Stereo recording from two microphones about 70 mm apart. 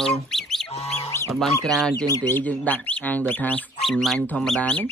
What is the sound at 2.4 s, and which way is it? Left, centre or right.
Speech, left.